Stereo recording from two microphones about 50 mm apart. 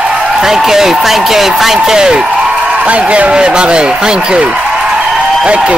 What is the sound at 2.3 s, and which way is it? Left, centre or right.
A man's voice, right.